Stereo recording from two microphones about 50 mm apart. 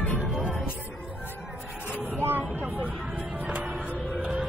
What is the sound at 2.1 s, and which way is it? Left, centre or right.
Vehicle, right.